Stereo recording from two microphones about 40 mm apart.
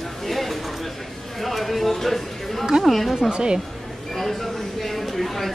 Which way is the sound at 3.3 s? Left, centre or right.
Right.